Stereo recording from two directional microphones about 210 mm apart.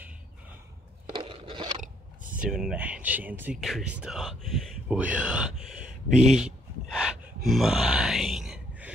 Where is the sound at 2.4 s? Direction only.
5° right (ahead or behind).